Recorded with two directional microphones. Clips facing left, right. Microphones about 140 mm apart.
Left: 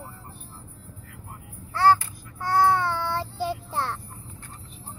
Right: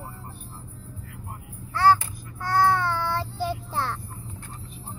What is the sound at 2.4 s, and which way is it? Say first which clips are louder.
Child singing: left 1 dB; 25° left (ahead or behind).